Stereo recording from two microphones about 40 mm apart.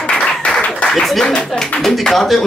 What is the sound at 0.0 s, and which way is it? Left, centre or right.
Applause, left.